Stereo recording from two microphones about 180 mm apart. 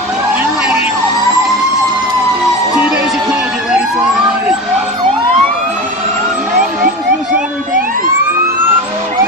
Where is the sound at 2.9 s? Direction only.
5° right (ahead or behind).